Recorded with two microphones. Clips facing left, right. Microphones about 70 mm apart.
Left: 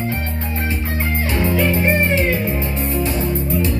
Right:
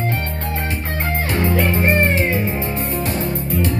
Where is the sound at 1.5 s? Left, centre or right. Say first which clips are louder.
Even; right.